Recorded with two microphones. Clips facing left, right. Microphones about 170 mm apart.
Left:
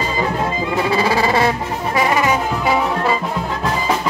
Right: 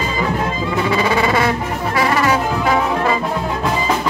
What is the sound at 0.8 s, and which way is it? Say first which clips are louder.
Music: right 1 dB; 30° left (ahead or behind).